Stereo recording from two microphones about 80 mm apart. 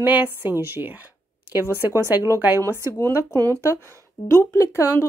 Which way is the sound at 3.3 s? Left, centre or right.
Left.